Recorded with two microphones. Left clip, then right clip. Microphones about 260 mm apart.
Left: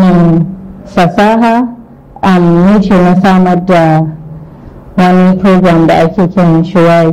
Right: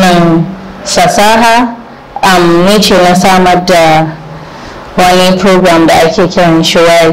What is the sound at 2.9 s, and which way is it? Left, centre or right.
Speech, right.